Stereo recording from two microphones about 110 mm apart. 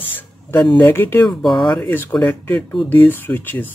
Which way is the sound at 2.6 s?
10° left (ahead or behind).